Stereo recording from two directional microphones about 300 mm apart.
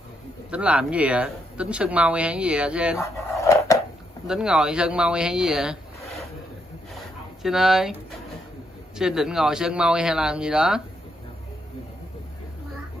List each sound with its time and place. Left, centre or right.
0.5 s speech: centre
3.0 s drawer open or close: centre
4.3 s speech: centre
7.4 s speech: centre
8.9 s speech: centre